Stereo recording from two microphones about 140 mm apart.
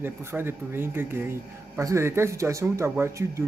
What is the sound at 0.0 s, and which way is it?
Speech, 15° right (ahead or behind).